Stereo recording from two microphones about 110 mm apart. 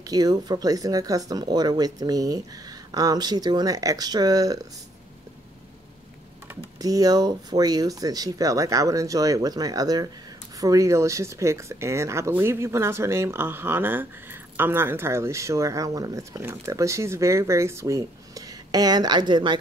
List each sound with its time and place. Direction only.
0.0 s speech: 35° right (ahead or behind)
6.8 s speech: 35° right (ahead or behind)